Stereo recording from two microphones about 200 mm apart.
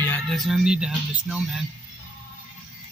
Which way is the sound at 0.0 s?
10° left (ahead or behind).